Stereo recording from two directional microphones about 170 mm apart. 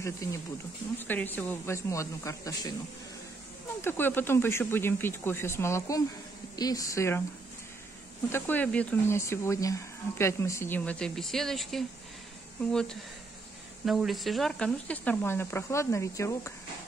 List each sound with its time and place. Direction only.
0.0 s speech: 15° left (ahead or behind)
3.8 s speech: 15° left (ahead or behind)
8.3 s speech: 10° left (ahead or behind)
13.8 s speech: centre (ahead or behind); by 16.5 s 15° left (ahead or behind)